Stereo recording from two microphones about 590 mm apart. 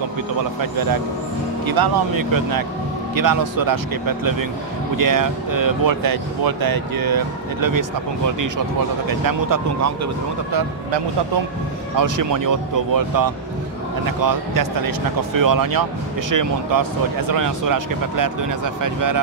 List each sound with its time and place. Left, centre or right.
0.6 s speech: right
9.2 s speech: right
12.0 s speech: right